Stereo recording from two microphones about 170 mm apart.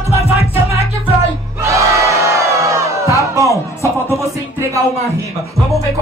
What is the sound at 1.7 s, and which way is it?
Crowd, 20° right (ahead or behind).